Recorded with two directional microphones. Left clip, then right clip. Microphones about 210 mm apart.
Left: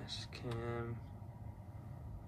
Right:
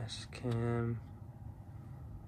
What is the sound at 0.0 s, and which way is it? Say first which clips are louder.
Speech: right 3 dB; 10° left (ahead or behind).